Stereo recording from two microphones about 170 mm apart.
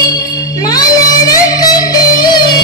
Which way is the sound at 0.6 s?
20° left (ahead or behind).